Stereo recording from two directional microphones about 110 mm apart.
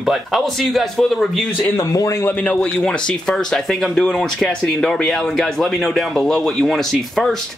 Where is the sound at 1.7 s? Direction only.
30° left (ahead or behind).